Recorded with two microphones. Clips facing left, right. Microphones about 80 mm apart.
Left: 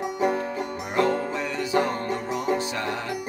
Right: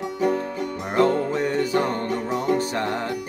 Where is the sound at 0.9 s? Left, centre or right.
Right.